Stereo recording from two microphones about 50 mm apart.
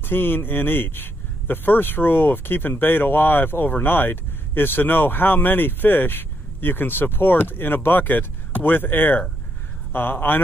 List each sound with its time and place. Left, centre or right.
0.0 s speech: left